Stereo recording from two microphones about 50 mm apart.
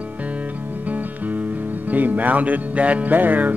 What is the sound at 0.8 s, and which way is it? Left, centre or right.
Music, right.